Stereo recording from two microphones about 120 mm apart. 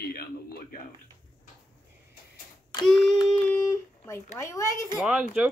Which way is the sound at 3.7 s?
20° left (ahead or behind).